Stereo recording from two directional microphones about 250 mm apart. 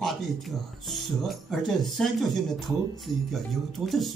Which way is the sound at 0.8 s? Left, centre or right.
Centre.